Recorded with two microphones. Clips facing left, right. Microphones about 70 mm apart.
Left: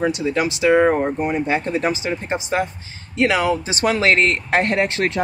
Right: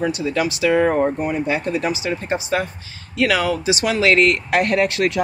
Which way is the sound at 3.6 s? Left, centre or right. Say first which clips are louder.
Even; left.